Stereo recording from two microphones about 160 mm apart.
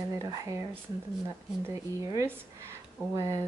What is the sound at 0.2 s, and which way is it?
Speech, 20° right (ahead or behind).